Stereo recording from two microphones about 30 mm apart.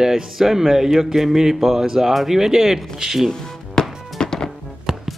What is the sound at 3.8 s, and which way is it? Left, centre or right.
Music, centre.